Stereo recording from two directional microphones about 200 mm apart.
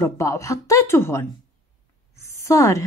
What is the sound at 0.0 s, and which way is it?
Speech, 15° left (ahead or behind).